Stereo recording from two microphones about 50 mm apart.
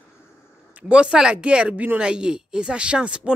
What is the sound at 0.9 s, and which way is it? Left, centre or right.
Speech, centre.